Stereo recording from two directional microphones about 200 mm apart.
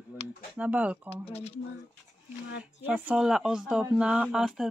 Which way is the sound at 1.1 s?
30° left (ahead or behind).